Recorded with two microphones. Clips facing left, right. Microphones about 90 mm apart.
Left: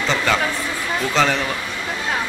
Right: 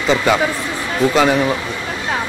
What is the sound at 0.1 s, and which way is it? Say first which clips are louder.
Speech: right 6 dB; 15° right (ahead or behind).